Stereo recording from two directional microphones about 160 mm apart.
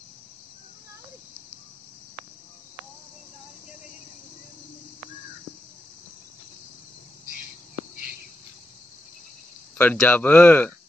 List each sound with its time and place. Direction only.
9.8 s speech: 10° left (ahead or behind)